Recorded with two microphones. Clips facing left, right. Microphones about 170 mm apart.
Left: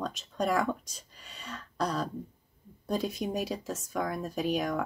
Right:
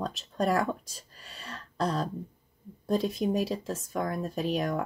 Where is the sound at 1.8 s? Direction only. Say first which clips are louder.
Right 2 dB; 30° right (ahead or behind).